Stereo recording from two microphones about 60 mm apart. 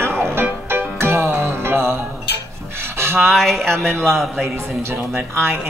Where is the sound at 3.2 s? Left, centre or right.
Centre.